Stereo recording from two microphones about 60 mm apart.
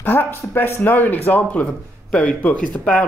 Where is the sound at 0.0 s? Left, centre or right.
Left.